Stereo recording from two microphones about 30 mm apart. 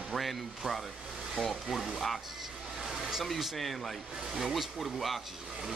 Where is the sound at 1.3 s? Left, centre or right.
Centre.